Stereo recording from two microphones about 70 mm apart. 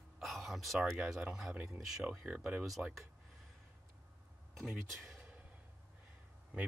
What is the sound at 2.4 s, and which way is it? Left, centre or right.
Speech, right.